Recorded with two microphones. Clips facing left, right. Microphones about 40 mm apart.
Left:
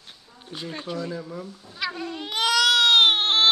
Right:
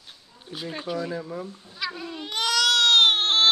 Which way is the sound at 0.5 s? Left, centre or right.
Centre.